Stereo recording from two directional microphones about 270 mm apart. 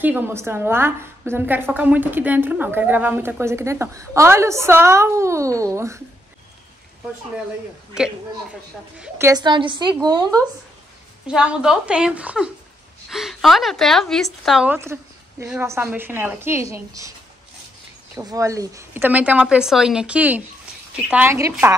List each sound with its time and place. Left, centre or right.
0.0 s a woman's voice: centre
9.0 s a woman's voice: centre
11.2 s a woman's voice: centre
18.1 s a woman's voice: centre